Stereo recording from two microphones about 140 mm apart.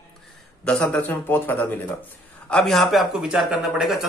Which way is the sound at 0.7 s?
5° left (ahead or behind).